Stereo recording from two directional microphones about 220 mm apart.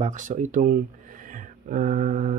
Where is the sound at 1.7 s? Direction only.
35° right (ahead or behind).